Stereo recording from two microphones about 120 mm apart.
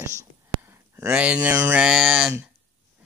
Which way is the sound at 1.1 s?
10° right (ahead or behind).